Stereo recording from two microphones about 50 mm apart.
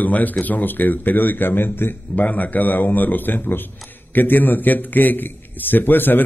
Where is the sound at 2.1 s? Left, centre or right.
Left.